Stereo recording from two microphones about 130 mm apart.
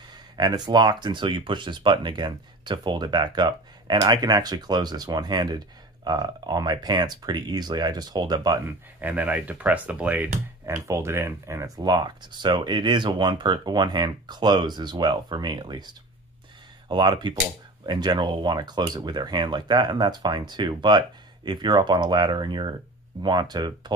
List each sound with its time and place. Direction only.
0.4 s speech: 35° right (ahead or behind)
8.6 s speech: 10° right (ahead or behind); by 23.9 s 35° right (ahead or behind)